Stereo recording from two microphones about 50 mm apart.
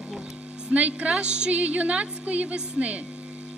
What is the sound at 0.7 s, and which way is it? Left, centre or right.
A woman's voice, right.